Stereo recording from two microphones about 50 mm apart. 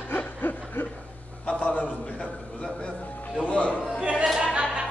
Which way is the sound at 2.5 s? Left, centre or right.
Left.